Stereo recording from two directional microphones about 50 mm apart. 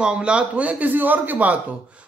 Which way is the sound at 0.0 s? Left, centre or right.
Centre.